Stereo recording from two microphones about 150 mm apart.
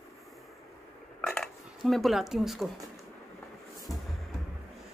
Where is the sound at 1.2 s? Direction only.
5° left (ahead or behind).